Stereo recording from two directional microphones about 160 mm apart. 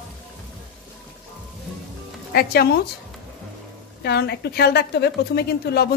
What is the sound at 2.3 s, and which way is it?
Speech, 75° left (ahead or behind).